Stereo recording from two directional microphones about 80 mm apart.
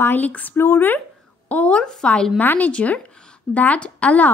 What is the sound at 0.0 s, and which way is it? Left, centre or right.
Speech, left.